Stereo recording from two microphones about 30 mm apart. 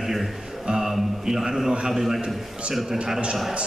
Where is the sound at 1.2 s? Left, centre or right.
Centre.